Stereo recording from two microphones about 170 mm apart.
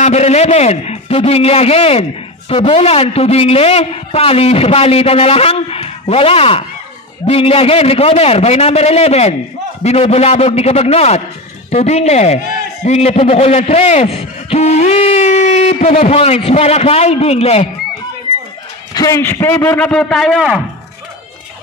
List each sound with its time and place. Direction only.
0.0 s a man's voice: 40° left (ahead or behind)
18.9 s a man's voice: 20° left (ahead or behind); by 20.6 s 5° right (ahead or behind)